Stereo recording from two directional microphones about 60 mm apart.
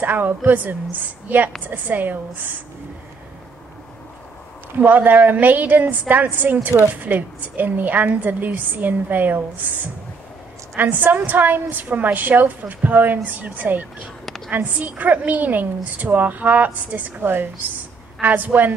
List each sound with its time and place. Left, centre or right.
0.0 s a woman's voice: right
4.7 s a woman's voice: right